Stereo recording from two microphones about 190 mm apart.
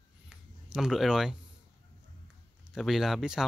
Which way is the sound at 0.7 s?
Centre (ahead or behind).